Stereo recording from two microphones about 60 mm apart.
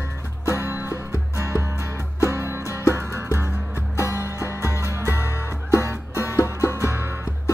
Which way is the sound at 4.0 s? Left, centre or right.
Left.